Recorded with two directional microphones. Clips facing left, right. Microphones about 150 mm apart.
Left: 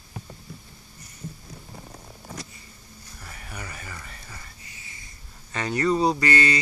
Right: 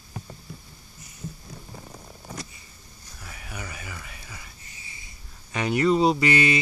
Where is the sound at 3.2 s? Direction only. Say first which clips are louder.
Right 1 dB; 5° right (ahead or behind).